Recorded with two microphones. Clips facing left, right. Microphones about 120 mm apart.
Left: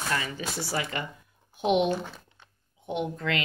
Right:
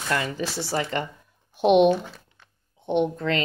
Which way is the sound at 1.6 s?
65° right (ahead or behind).